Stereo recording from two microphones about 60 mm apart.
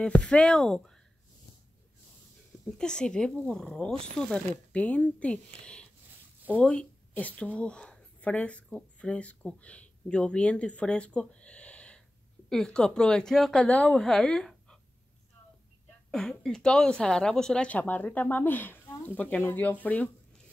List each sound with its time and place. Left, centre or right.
0.2 s a woman's voice: centre
2.8 s a woman's voice: centre
3.8 s speech: centre
8.6 s speech: centre
12.4 s a woman's voice: centre
13.6 s speech: left
13.9 s speech: centre
16.1 s a woman's voice: centre
17.6 s speech: left